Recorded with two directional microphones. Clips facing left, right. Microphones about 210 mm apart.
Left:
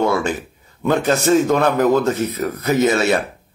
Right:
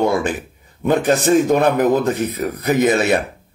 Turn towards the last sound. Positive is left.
turn(degrees=-15)  # may be behind; listen again after turning